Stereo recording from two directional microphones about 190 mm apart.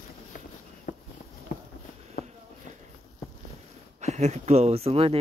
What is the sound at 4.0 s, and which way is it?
Speech, 35° right (ahead or behind).